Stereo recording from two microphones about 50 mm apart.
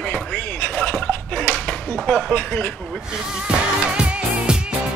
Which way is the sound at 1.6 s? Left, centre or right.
Left.